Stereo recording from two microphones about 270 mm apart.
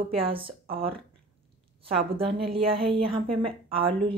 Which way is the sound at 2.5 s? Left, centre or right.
Right.